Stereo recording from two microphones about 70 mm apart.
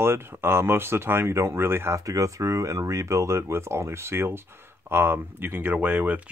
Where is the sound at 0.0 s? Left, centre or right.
Right.